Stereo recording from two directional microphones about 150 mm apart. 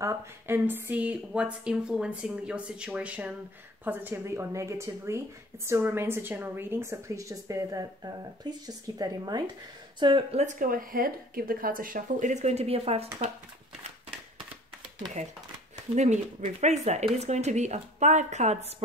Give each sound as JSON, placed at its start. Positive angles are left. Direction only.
{"t": 0.0, "sound": "a woman's voice", "side_deg": -15}
{"t": 10.4, "sound": "speech", "side_deg": -60}
{"t": 15.2, "sound": "speech", "side_deg": -50}